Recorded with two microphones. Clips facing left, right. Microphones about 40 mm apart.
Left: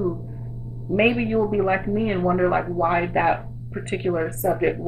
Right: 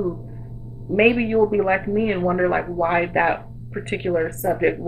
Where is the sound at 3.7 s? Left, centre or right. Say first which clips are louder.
Right 1 dB; centre.